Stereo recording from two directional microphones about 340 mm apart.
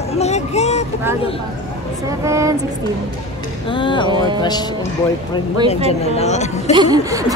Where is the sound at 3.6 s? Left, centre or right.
Centre.